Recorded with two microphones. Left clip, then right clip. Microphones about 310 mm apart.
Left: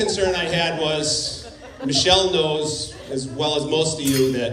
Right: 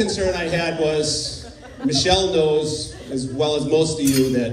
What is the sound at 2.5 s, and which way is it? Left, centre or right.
A man's voice, left.